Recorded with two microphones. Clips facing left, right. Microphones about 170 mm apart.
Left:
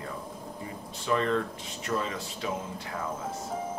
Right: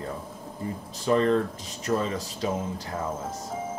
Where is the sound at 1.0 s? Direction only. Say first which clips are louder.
Right 5 dB; 35° right (ahead or behind).